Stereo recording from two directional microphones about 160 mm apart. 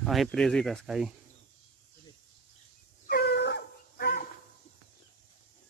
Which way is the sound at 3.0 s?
85° left.